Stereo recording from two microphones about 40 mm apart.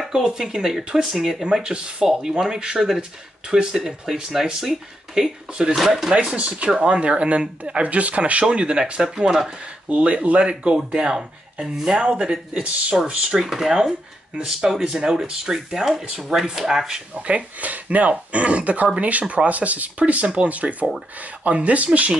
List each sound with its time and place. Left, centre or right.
0.1 s speech: centre
1.4 s speech: right
6.1 s speech: right
8.5 s speech: right
9.8 s speech: right
10.5 s speech: right
11.6 s speech: centre
12.0 s speech: right
13.4 s speech: centre
17.1 s speech: right